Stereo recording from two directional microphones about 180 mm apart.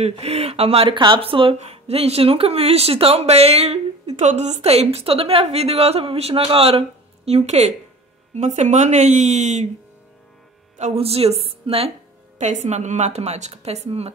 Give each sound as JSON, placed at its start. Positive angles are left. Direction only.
{"t": 0.0, "sound": "speech", "side_deg": -35}
{"t": 10.8, "sound": "speech", "side_deg": -35}